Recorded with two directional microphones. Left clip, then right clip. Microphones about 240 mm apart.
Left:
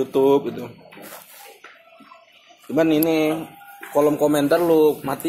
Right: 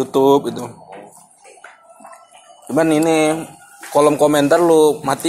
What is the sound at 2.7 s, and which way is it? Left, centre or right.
A man's voice, right.